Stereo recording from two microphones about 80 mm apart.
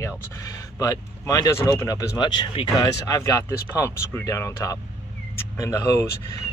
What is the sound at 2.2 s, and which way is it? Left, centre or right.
Speech, left.